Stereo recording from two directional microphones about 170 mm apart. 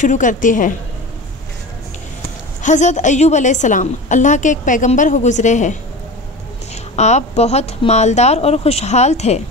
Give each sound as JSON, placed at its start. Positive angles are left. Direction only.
{"t": 0.0, "sound": "a woman's voice", "side_deg": 45}
{"t": 2.6, "sound": "a woman's voice", "side_deg": 45}